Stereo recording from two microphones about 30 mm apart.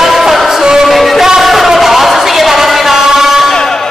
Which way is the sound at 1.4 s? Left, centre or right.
Centre.